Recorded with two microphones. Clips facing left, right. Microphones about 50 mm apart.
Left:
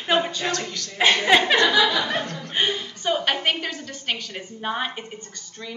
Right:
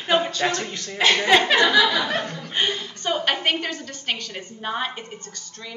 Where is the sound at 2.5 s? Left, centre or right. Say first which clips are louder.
Left 1 dB; centre.